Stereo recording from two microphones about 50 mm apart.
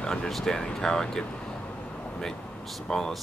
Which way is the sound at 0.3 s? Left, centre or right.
Centre.